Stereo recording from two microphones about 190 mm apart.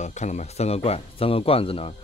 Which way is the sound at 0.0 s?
40° left (ahead or behind).